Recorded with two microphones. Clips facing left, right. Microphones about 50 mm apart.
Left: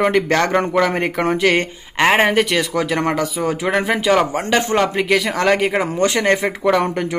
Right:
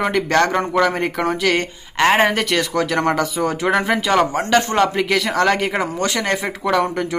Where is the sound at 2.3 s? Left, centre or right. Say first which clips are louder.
Left 2 dB; centre.